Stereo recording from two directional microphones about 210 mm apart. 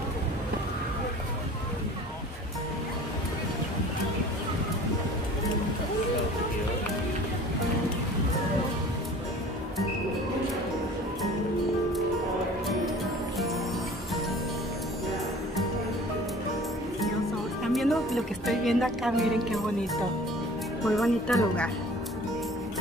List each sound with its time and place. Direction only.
17.7 s a woman's voice: centre (ahead or behind)
20.8 s speech: centre (ahead or behind)